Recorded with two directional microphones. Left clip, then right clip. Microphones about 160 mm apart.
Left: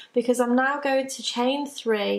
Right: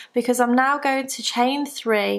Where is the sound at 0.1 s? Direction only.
35° right (ahead or behind).